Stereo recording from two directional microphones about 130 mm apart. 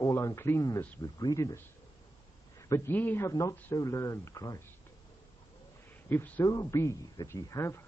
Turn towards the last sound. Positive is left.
turn(degrees=25)  # may be behind; listen again after turning